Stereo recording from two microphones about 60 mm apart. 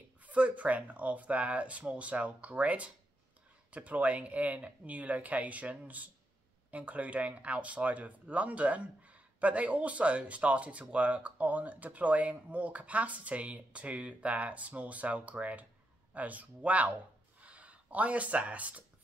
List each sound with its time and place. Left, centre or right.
0.3 s speech: right